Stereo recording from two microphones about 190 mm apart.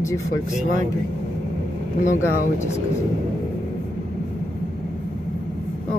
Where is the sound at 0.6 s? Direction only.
45° right (ahead or behind).